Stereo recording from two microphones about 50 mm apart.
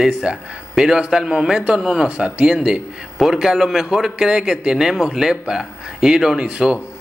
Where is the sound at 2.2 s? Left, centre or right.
Right.